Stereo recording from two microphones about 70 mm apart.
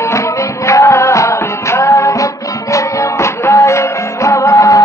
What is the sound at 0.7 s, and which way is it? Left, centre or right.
Music, left.